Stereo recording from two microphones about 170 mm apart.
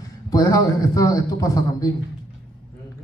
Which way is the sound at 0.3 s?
20° left (ahead or behind).